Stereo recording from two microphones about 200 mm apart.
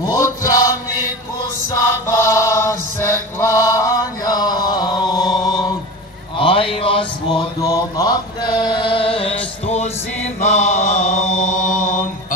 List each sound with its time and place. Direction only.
0.0 s chant: 20° left (ahead or behind)
2.0 s mantra: 15° left (ahead or behind); by 12.1 s 40° left (ahead or behind)